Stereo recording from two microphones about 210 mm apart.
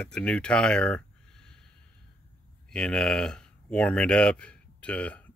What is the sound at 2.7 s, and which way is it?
Speech, 5° left (ahead or behind).